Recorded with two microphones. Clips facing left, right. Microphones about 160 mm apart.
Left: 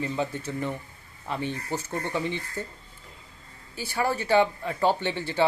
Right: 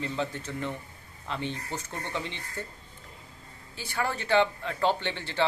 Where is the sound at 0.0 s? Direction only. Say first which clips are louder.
Left 3 dB; 10° left (ahead or behind).